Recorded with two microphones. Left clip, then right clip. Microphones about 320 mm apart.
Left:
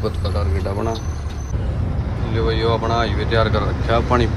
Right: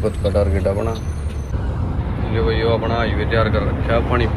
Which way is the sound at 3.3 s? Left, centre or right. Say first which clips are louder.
Left 1 dB; centre.